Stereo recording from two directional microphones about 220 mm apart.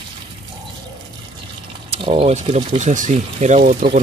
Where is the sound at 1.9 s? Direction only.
25° right (ahead or behind).